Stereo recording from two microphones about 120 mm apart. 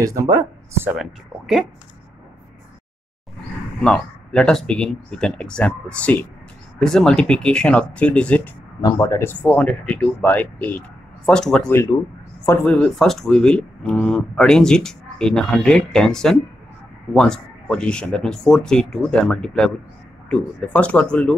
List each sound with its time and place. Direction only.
0.0 s speech: 25° right (ahead or behind)
3.8 s speech: 5° left (ahead or behind)